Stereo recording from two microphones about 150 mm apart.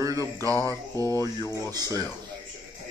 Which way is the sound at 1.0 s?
20° left (ahead or behind).